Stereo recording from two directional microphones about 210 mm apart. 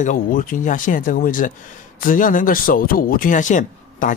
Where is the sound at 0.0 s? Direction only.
40° left (ahead or behind).